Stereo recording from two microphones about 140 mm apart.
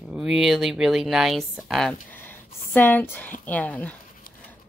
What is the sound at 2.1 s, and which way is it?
Speech, 15° left (ahead or behind).